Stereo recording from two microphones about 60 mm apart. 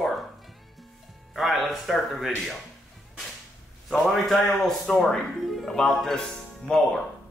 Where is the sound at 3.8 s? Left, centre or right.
Centre.